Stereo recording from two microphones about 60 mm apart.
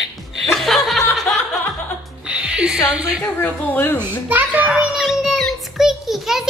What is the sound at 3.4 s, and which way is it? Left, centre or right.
Speech, left.